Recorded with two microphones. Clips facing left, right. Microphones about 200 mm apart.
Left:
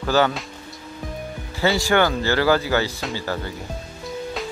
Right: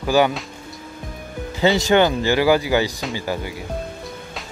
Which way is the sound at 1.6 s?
20° right (ahead or behind).